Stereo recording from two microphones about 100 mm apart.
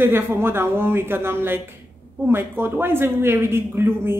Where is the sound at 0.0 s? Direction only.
20° right (ahead or behind).